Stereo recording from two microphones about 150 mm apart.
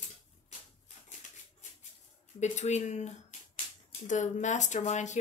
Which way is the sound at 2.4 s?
50° left (ahead or behind).